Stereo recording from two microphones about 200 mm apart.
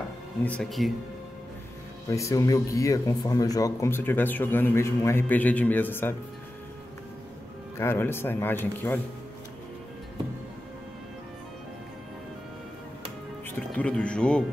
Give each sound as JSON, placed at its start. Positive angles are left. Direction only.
{"t": 0.5, "sound": "speech", "side_deg": 0}
{"t": 2.0, "sound": "a man's voice", "side_deg": 15}
{"t": 7.7, "sound": "a man's voice", "side_deg": 10}
{"t": 13.7, "sound": "speech", "side_deg": 5}